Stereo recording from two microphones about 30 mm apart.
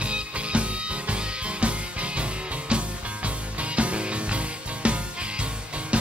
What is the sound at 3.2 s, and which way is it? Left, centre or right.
Music, right.